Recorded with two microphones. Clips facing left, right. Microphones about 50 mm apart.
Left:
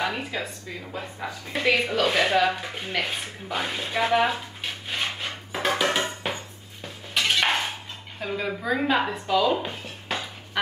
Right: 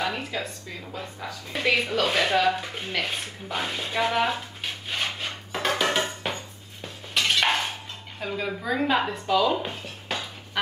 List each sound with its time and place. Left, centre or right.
0.0 s a woman's voice: centre
1.6 s speech: centre
4.8 s dishes: centre
7.2 s cutlery: centre
8.2 s speech: centre